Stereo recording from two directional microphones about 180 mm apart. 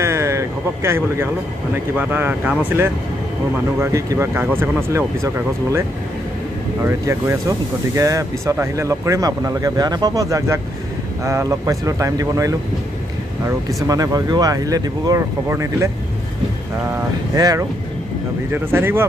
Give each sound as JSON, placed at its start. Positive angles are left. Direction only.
{"t": 0.0, "sound": "a sound", "side_deg": -15}
{"t": 2.0, "sound": "speech", "side_deg": -10}
{"t": 13.8, "sound": "speech", "side_deg": -20}
{"t": 16.9, "sound": "speech", "side_deg": -20}